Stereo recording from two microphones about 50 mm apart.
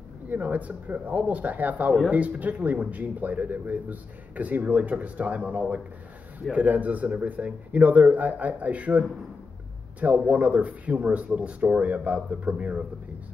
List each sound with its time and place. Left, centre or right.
0.3 s speech: right